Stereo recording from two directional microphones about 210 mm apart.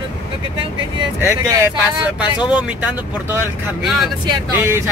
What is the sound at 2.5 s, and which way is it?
Speech, 5° right (ahead or behind).